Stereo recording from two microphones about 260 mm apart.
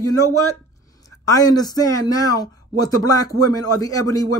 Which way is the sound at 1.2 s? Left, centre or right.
Centre.